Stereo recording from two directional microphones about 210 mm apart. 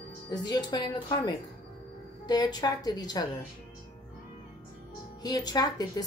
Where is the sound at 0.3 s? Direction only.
20° left (ahead or behind).